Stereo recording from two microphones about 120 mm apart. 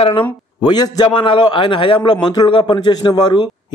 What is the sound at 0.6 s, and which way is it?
A man's voice, 35° left (ahead or behind).